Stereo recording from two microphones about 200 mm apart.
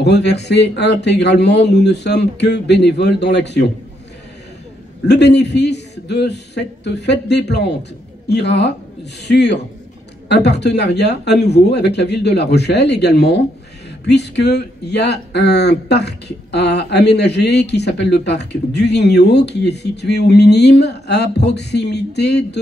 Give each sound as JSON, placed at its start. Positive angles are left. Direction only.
{"t": 0.0, "sound": "speech", "side_deg": 60}
{"t": 5.0, "sound": "speech", "side_deg": 55}